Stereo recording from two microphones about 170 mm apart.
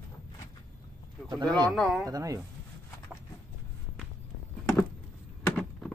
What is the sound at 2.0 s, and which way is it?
Speech, 20° right (ahead or behind).